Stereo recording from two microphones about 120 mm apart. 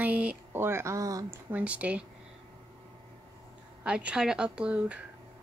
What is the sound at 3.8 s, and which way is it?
Speech, 10° right (ahead or behind).